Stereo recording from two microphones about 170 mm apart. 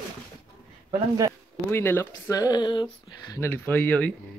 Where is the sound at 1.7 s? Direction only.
15° left (ahead or behind).